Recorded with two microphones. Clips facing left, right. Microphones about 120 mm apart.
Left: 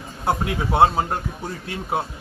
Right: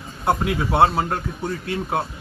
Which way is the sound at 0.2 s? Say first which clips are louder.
Right 2 dB; 20° left (ahead or behind).